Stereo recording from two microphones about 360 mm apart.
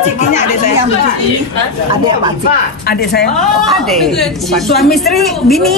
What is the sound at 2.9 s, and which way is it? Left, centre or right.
Speech, left.